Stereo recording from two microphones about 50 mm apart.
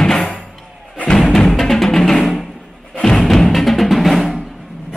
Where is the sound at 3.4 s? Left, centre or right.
Centre.